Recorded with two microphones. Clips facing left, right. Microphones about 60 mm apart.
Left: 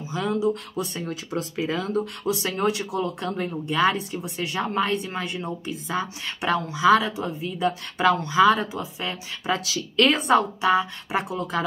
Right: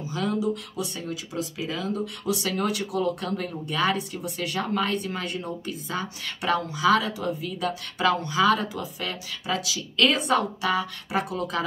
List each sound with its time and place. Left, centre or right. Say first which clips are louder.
0.0 s speech: left 2 dB; left